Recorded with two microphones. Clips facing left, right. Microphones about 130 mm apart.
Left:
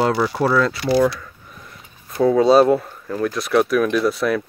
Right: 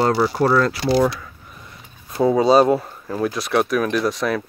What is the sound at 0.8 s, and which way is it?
Speech, 25° right (ahead or behind).